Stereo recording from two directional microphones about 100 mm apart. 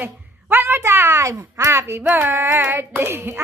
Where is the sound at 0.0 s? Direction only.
20° right (ahead or behind).